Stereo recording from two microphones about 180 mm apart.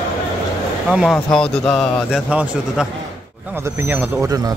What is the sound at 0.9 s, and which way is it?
A man's voice, 5° right (ahead or behind).